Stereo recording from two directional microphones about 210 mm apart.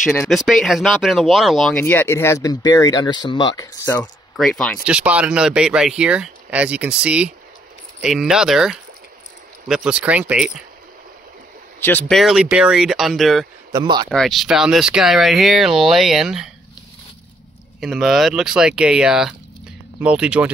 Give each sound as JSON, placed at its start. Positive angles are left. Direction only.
{"t": 0.3, "sound": "speech", "side_deg": 0}
{"t": 11.8, "sound": "speech", "side_deg": 5}
{"t": 13.7, "sound": "speech", "side_deg": -20}
{"t": 14.0, "sound": "speech", "side_deg": 0}
{"t": 17.7, "sound": "speech", "side_deg": 0}